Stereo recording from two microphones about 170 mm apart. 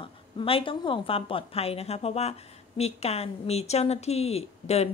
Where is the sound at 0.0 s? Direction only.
30° left (ahead or behind).